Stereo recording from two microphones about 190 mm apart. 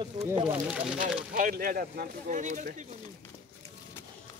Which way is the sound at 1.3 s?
45° right (ahead or behind).